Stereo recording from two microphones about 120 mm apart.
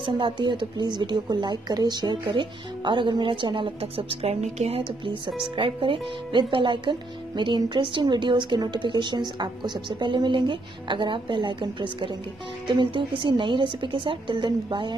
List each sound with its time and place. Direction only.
0.0 s a woman's voice: 40° right (ahead or behind)